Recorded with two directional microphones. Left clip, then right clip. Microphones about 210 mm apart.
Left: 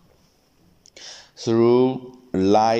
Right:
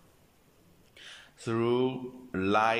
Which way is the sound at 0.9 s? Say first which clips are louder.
Left 9 dB; 25° left (ahead or behind).